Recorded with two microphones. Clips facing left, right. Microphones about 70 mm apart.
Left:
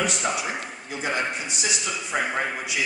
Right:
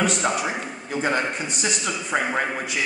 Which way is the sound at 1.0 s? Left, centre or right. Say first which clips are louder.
Right 3 dB; right.